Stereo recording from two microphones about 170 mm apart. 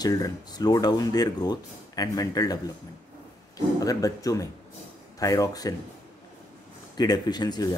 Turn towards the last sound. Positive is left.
turn(degrees=25)  # may be behind; listen again after turning